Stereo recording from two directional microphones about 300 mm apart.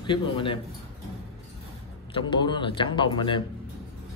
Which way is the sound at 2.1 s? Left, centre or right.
Centre.